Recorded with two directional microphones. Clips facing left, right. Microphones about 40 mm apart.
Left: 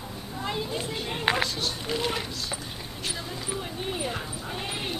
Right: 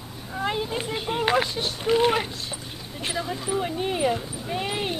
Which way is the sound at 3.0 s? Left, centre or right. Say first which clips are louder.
Right 6 dB; right.